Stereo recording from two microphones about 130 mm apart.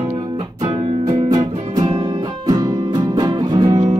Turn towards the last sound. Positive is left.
turn(degrees=-35)  # may be behind; listen again after turning